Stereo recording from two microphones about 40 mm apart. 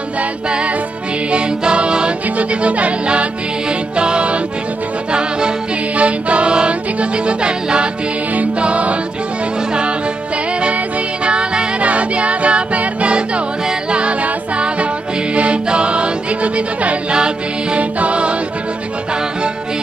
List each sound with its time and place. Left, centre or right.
1.3 s music: right
2.3 s music: right
5.9 s music: right
11.2 s music: right